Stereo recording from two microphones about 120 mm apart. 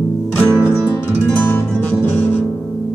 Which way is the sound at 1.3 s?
15° left (ahead or behind).